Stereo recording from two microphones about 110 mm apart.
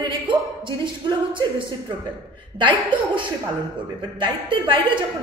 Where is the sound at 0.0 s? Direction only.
45° right (ahead or behind).